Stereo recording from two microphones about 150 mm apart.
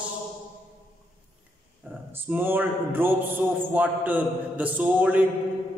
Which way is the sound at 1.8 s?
10° right (ahead or behind).